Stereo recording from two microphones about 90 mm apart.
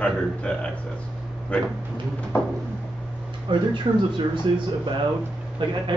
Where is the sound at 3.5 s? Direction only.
60° right (ahead or behind).